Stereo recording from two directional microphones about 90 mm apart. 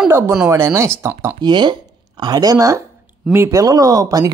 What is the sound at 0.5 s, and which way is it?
Speech, 30° right (ahead or behind).